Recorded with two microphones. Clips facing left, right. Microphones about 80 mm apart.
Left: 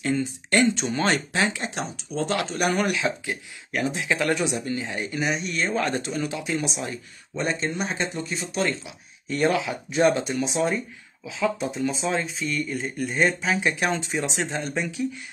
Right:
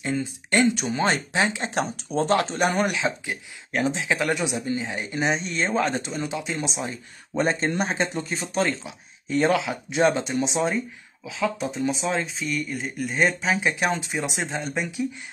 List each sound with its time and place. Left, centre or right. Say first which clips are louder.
0.0 s speech: left 2 dB; centre
1.7 s speech: right 5 dB; right
7.3 s speech: right 3 dB; right
8.6 s speech: even; right
11.8 s speech: right 1 dB; centre
13.2 s speech: even; centre
14.5 s speech: even; centre
14.8 s speech: even; centre